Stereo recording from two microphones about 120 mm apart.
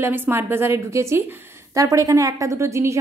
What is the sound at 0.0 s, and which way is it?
A woman's voice, 20° right (ahead or behind).